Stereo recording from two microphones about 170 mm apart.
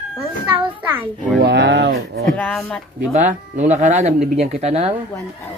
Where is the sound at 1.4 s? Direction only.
90° right.